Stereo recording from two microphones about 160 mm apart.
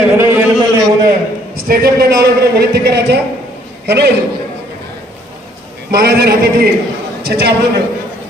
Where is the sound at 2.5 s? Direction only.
90° right.